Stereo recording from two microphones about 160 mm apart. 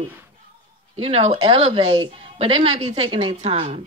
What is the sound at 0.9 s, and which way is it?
Speech, 35° right (ahead or behind).